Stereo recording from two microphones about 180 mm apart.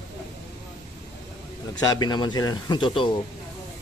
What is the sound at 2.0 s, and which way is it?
A man's voice, 25° left (ahead or behind).